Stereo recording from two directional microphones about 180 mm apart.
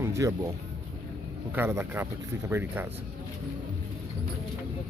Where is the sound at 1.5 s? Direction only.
15° right (ahead or behind).